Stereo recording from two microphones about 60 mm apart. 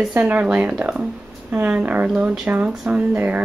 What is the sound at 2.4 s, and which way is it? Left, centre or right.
Speech, right.